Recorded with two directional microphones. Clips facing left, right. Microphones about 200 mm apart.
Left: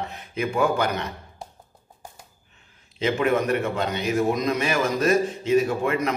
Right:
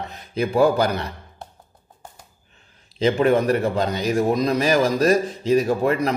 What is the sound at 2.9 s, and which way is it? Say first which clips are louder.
A man's voice: right 4 dB; 35° right (ahead or behind).